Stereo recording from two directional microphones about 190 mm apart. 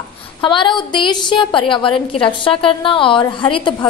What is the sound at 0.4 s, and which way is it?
A woman's voice, 25° left (ahead or behind).